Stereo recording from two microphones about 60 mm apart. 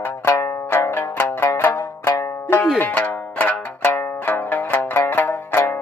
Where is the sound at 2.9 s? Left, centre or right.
Left.